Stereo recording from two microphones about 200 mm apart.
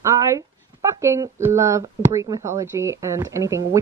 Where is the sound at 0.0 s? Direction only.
15° right (ahead or behind).